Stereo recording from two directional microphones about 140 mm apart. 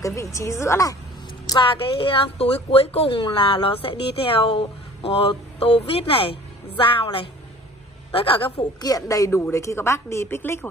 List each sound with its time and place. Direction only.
0.0 s a woman's voice: 20° left (ahead or behind)
1.5 s a woman's voice: 35° left (ahead or behind)
8.5 s a woman's voice: 25° left (ahead or behind)